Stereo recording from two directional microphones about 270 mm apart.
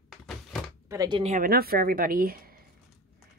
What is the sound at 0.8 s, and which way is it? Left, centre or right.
A woman's voice, centre.